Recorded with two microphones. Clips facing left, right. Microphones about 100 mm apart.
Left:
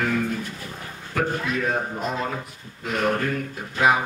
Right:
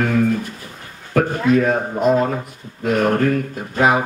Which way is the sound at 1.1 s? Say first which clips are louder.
Right 9 dB; 40° right (ahead or behind).